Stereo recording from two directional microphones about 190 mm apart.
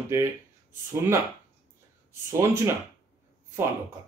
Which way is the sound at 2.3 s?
15° right (ahead or behind).